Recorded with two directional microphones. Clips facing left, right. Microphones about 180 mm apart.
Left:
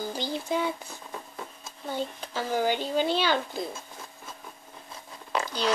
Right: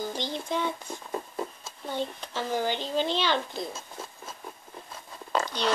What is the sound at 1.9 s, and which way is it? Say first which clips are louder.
Speech: even; 10° left (ahead or behind).